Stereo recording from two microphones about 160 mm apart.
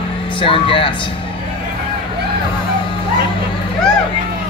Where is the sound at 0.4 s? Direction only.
35° left (ahead or behind).